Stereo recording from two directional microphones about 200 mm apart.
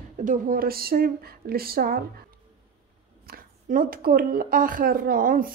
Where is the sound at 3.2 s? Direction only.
45° right (ahead or behind).